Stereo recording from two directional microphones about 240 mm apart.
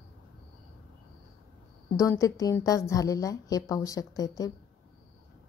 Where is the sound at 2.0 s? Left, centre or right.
Centre.